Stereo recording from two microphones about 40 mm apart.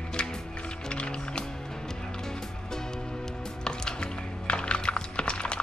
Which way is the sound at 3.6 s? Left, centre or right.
Left.